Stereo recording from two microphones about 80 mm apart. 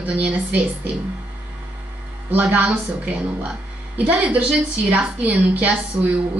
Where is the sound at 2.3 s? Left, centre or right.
Right.